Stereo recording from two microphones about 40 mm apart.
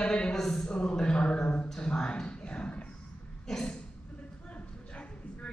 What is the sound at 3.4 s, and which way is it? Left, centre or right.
Throat clearing, centre.